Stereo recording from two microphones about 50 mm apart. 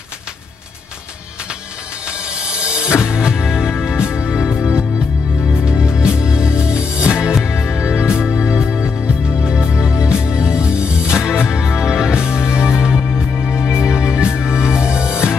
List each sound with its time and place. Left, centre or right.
2.0 s music: centre